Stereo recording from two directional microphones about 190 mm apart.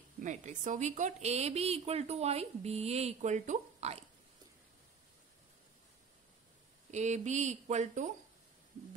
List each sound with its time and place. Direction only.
0.2 s a woman's voice: 40° right (ahead or behind)
6.9 s a woman's voice: 40° right (ahead or behind)